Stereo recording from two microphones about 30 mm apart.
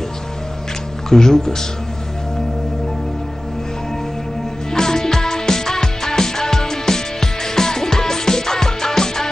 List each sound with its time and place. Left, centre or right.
1.1 s speech: centre
4.7 s music: centre